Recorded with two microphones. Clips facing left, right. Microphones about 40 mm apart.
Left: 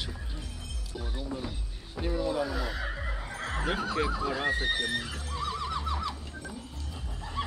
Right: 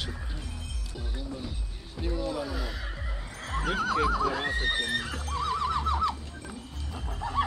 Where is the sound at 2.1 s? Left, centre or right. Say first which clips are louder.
Left 2 dB; centre.